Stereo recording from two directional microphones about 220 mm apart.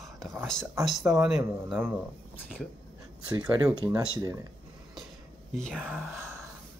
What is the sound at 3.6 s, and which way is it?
Speech, 15° right (ahead or behind).